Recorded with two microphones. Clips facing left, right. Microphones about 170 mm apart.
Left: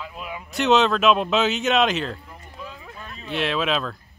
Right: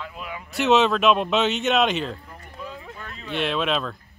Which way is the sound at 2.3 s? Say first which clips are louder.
Right 2 dB; 15° left (ahead or behind).